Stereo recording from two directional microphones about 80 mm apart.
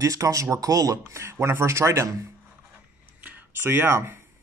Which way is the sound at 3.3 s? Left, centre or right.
Right.